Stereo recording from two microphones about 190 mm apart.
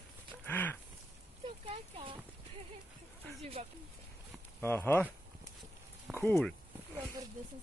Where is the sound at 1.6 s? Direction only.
30° right (ahead or behind).